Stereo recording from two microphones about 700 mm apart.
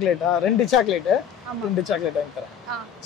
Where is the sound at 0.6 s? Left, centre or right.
Left.